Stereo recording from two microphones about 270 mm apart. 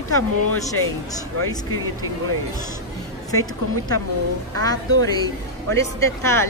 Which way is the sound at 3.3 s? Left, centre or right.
Centre.